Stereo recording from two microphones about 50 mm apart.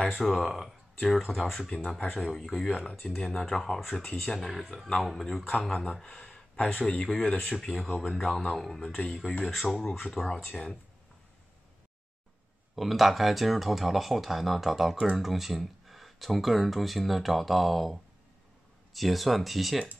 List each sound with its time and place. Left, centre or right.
0.0 s speech: centre
1.7 s speech: centre
8.9 s speech: centre
9.4 s speech: centre
12.7 s speech: centre